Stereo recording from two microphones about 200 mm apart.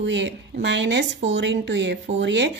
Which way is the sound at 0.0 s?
65° right (ahead or behind).